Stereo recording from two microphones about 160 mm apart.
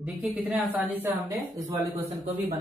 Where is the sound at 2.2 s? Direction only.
40° right (ahead or behind).